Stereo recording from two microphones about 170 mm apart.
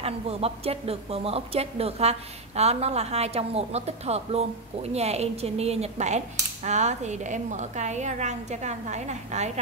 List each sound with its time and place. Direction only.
0.0 s a woman's voice: 35° right (ahead or behind)